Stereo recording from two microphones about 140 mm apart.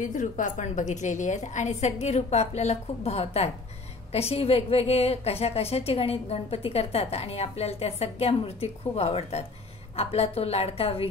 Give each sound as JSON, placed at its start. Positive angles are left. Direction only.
{"t": 0.0, "sound": "a woman's voice", "side_deg": 65}